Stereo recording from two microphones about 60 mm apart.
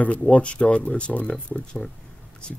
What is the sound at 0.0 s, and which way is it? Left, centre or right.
Speech, left.